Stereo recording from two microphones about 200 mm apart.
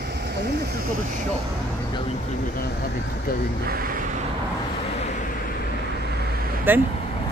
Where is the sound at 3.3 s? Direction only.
50° left (ahead or behind).